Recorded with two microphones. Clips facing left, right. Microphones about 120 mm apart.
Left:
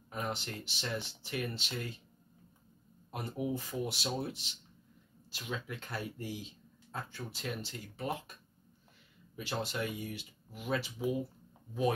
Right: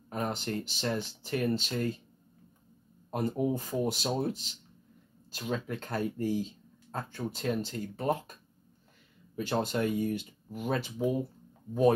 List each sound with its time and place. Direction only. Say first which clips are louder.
0.1 s speech: right 6 dB; 45° right (ahead or behind)
3.1 s speech: right 7 dB; 40° right (ahead or behind)